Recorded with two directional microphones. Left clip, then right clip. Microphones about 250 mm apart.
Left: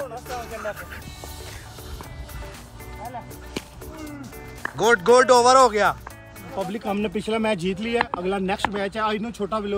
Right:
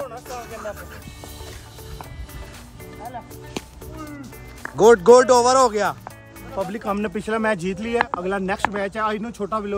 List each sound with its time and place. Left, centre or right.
0.6 s speech: centre
3.5 s music: centre
4.7 s speech: right
6.5 s speech: centre